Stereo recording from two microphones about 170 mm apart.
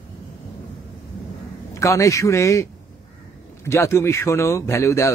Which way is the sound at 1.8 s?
20° left (ahead or behind).